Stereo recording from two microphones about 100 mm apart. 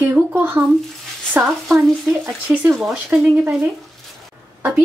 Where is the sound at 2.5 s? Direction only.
20° right (ahead or behind).